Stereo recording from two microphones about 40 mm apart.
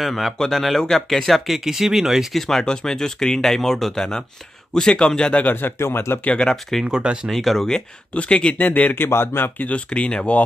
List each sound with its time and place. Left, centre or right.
0.0 s speech: centre
1.6 s speech: centre
2.3 s speech: centre
2.6 s a man's voice: centre
5.5 s speech: left
6.2 s a man's voice: left
6.5 s speech: centre
8.1 s a man's voice: left
8.5 s speech: left
8.9 s speech: left
9.8 s a man's voice: left